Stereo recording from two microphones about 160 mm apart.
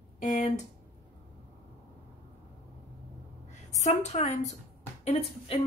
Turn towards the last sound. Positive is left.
turn(degrees=40)  # may be behind; listen again after turning